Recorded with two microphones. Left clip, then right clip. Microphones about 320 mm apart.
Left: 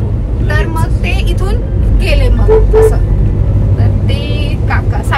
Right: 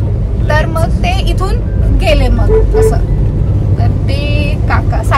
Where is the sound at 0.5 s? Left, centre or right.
Centre.